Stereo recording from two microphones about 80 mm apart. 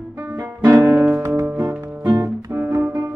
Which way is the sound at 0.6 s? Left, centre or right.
Right.